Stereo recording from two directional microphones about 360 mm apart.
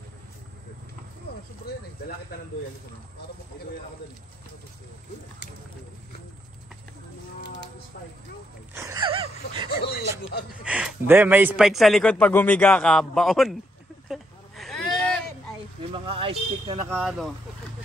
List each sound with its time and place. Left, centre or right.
8.7 s gasp: centre
10.6 s a man's voice: centre
14.0 s a sound: centre
15.8 s speech: centre